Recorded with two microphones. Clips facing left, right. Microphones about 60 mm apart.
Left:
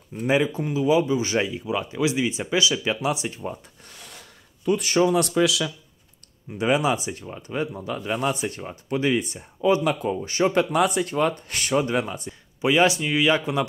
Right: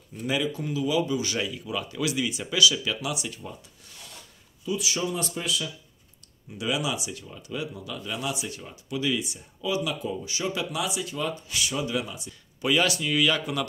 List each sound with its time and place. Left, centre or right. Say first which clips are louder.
0.1 s speech: left 6 dB; left
4.6 s speech: left 9 dB; left
5.1 s speech: left 10 dB; left
6.6 s speech: left 7 dB; left
12.6 s speech: left 5 dB; left